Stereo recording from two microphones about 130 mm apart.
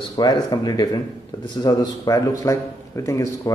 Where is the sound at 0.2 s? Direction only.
30° left (ahead or behind).